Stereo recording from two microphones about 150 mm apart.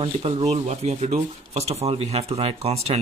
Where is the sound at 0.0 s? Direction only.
40° right (ahead or behind).